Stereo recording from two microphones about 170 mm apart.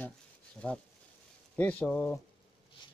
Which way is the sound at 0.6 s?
5° left (ahead or behind).